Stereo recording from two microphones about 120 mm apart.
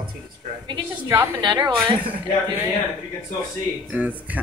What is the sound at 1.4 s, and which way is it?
Speech, 40° right (ahead or behind).